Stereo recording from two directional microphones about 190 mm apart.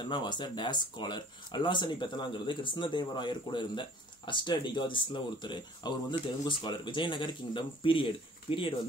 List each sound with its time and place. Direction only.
0.0 s speech: 25° left (ahead or behind)